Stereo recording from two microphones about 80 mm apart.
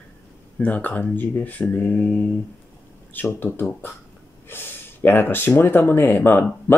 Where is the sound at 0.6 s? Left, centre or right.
Left.